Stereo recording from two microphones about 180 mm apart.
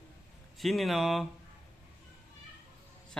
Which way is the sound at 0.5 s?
Centre (ahead or behind).